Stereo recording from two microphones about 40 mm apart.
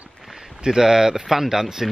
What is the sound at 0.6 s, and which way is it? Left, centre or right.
Speech, centre.